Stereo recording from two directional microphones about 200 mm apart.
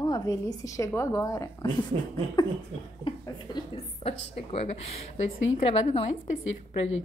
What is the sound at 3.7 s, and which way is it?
A woman's voice, 30° left (ahead or behind).